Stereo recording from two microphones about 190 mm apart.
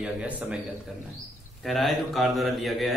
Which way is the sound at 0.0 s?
5° right (ahead or behind).